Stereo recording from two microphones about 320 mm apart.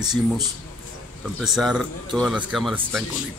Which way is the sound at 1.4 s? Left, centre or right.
Centre.